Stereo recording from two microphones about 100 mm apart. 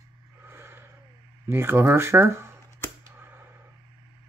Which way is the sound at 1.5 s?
25° right (ahead or behind).